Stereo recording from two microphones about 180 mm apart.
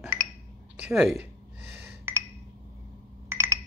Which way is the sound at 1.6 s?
15° right (ahead or behind).